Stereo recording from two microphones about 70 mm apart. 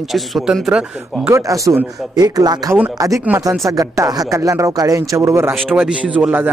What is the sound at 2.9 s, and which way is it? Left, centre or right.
Speech, right.